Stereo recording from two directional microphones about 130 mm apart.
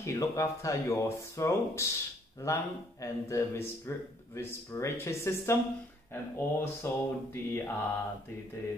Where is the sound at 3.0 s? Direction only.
20° left (ahead or behind).